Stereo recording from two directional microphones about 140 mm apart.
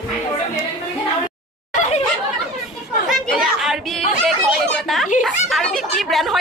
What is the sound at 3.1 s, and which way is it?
Chatter, centre (ahead or behind).